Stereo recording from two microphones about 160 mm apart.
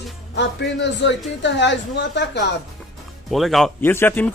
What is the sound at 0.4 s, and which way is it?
Speech, 90° left.